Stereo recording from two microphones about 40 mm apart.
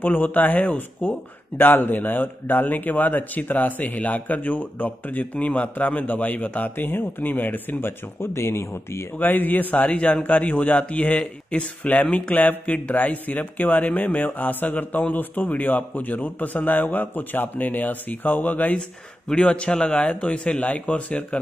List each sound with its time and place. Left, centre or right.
0.0 s a man's voice: left
1.6 s a man's voice: left
6.8 s speech: left
7.8 s speech: left
9.2 s a man's voice: left
13.0 s a man's voice: left
18.8 s speech: left